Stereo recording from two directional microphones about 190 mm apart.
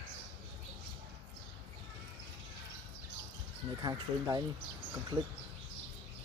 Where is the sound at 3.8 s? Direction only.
20° right (ahead or behind).